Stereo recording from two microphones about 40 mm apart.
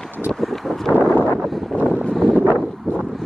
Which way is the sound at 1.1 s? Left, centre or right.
Left.